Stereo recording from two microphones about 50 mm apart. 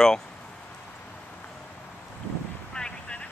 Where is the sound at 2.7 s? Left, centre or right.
Centre.